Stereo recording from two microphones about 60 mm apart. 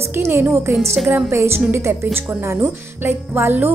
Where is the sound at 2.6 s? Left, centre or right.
Right.